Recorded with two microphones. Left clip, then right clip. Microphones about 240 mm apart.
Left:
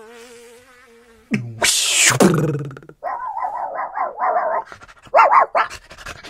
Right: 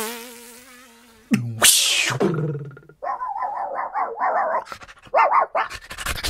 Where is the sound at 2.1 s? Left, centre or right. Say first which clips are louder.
Left 7 dB; left.